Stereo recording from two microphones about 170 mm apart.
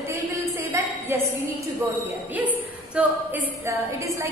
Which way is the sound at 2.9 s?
10° right (ahead or behind).